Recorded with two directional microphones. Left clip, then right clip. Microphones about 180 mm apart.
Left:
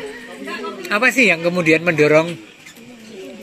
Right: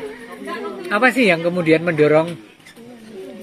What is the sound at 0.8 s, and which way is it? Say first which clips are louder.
A man's voice: left 1 dB; 15° left (ahead or behind).